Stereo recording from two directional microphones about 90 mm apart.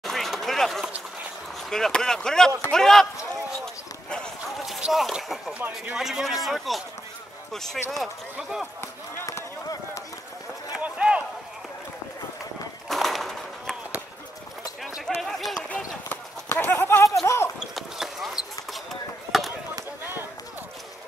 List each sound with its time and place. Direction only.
0.0 s a sound: centre (ahead or behind)
1.7 s speech: 5° left (ahead or behind)
3.6 s clip-clop: 10° left (ahead or behind)
4.6 s speech: 5° right (ahead or behind)
8.8 s run: 35° left (ahead or behind)
10.8 s run: 15° right (ahead or behind)
12.8 s a sound: centre (ahead or behind)
15.0 s a sound: centre (ahead or behind)
16.1 s horse: 20° left (ahead or behind)
17.6 s basketball bounce: 5° right (ahead or behind)